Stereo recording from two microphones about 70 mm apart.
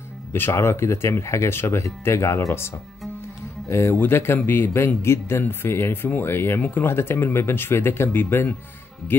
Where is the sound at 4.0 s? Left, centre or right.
Left.